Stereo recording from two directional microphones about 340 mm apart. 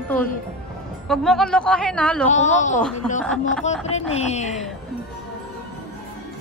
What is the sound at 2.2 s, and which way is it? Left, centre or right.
Speech, left.